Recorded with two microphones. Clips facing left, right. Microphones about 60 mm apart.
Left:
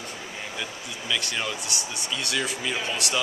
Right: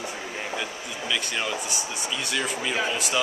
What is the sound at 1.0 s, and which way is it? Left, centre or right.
A man's voice, centre.